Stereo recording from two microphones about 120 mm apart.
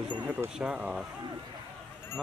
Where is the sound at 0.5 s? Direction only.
10° right (ahead or behind).